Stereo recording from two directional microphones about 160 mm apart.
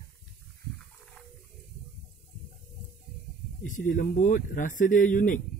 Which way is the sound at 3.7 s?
55° left (ahead or behind).